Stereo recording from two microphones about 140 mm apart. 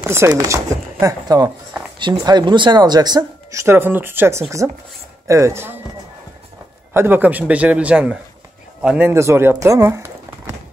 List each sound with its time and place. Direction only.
0.1 s speech: 25° right (ahead or behind)
6.9 s a man's voice: 15° right (ahead or behind)